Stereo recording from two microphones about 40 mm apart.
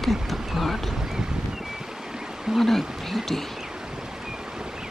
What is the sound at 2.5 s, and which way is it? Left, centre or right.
Speech, centre.